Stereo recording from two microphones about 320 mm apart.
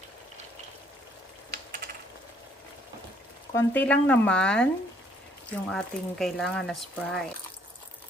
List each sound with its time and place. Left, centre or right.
1.5 s a sound: right
3.5 s speech: centre
5.7 s speech: centre